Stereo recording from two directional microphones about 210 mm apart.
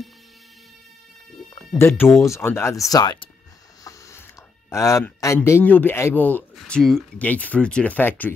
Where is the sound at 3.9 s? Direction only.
15° left (ahead or behind).